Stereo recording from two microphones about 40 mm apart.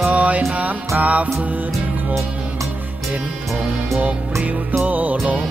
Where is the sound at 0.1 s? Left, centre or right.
Right.